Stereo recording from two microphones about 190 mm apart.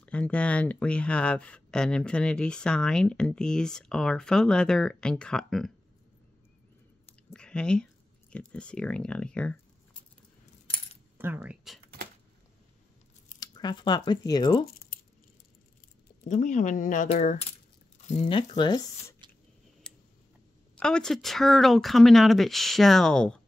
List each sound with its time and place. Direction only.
0.0 s speech: 5° left (ahead or behind)
7.2 s speech: 5° left (ahead or behind)
11.1 s speech: 10° right (ahead or behind)
13.4 s speech: 20° left (ahead or behind)
16.3 s speech: 40° left (ahead or behind)
18.6 s speech: 20° left (ahead or behind)
19.9 s tick: 5° left (ahead or behind)
20.7 s speech: 5° left (ahead or behind)